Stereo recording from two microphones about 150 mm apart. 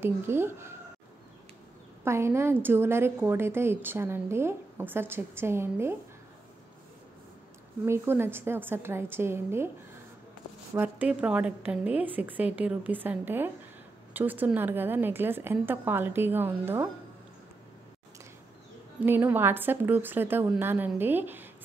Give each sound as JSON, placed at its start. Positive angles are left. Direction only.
{"t": 0.0, "sound": "a woman's voice", "side_deg": -15}
{"t": 2.0, "sound": "a woman's voice", "side_deg": -15}
{"t": 7.8, "sound": "a woman's voice", "side_deg": -15}
{"t": 10.7, "sound": "a woman's voice", "side_deg": -10}
{"t": 18.9, "sound": "a woman's voice", "side_deg": -10}